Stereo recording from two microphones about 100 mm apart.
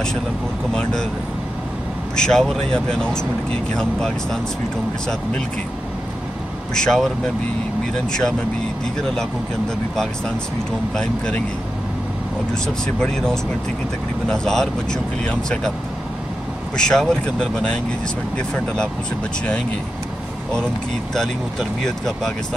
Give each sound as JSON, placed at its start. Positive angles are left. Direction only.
{"t": 2.1, "sound": "speech", "side_deg": 5}
{"t": 6.7, "sound": "speech", "side_deg": 5}
{"t": 8.1, "sound": "speech", "side_deg": 5}
{"t": 12.6, "sound": "speech", "side_deg": 10}
{"t": 16.7, "sound": "speech", "side_deg": 5}
{"t": 21.1, "sound": "speech", "side_deg": 5}